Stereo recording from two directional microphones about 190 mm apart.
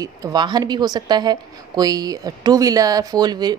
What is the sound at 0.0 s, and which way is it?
A woman's voice, 20° right (ahead or behind).